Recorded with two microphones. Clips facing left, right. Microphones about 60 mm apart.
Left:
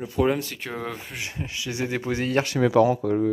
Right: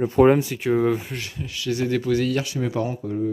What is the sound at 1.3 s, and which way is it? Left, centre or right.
Speech, left.